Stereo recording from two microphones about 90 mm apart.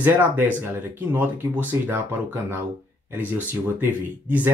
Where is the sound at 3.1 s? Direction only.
20° right (ahead or behind).